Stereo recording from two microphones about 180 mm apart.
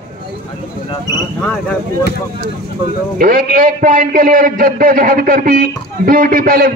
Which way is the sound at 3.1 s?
50° right (ahead or behind).